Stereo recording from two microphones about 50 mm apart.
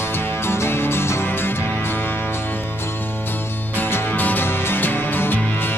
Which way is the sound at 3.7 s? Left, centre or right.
Left.